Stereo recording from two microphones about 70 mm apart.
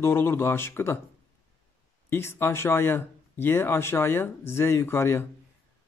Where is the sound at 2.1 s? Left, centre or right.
Left.